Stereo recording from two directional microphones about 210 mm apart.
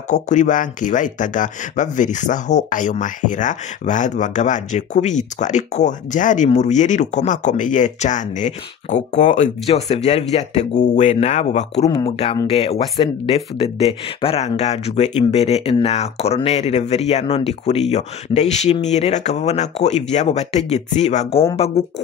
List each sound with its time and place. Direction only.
0.1 s speech: 35° left (ahead or behind)